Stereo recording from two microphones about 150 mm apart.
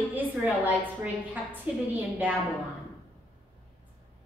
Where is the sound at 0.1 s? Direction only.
10° right (ahead or behind).